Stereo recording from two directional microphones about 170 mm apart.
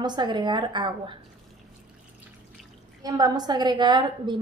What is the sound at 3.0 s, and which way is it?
A woman's voice, 20° right (ahead or behind).